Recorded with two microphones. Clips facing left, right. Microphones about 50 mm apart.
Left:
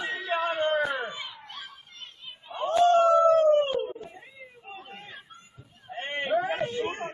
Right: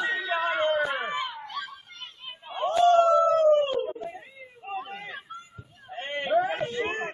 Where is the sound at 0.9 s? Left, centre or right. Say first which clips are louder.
Right 3 dB; right.